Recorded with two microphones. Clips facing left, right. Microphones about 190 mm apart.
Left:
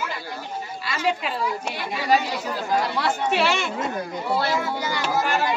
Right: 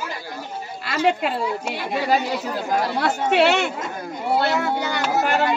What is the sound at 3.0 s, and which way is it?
Speech, 60° right (ahead or behind).